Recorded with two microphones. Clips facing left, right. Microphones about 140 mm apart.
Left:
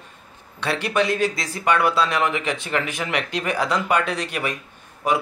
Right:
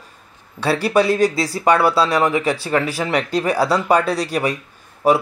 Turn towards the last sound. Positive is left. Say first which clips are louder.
# right 6 dB
turn(degrees=-35)  # may be behind; listen again after turning